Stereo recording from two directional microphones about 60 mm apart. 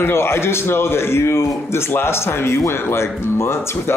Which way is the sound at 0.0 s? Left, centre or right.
Left.